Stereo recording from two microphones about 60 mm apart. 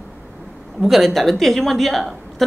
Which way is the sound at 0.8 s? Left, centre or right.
Centre.